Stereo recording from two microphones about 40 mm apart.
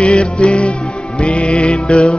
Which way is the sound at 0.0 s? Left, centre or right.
Left.